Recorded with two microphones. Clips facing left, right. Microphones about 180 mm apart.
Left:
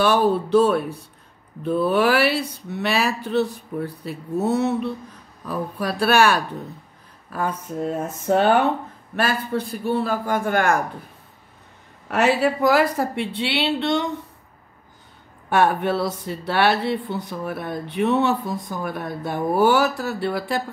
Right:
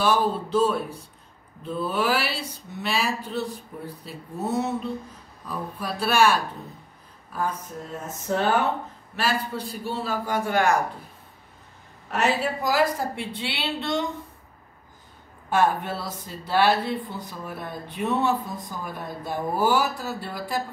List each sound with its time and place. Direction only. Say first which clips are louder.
0.0 s speech: left 5 dB; 65° left (ahead or behind)
9.1 s a man's voice: left 4 dB; 55° left (ahead or behind)
12.1 s speech: left 5 dB; 65° left (ahead or behind)
15.5 s speech: left 4 dB; 70° left (ahead or behind)